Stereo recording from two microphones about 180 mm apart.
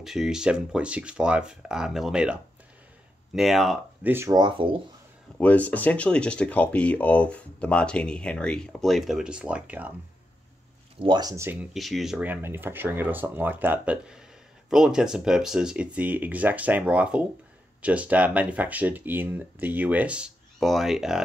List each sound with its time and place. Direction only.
0.0 s speech: centre (ahead or behind)
4.1 s speech: 15° right (ahead or behind)
5.4 s speech: 10° left (ahead or behind); by 9.9 s 10° right (ahead or behind)
11.0 s speech: 25° right (ahead or behind)
11.7 s speech: centre (ahead or behind)